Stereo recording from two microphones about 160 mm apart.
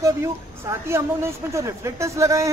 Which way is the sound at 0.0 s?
15° right (ahead or behind).